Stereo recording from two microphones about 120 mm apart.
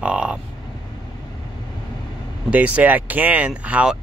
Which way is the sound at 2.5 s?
10° right (ahead or behind).